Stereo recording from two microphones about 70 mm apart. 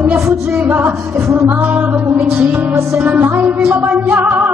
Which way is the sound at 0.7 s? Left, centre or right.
Right.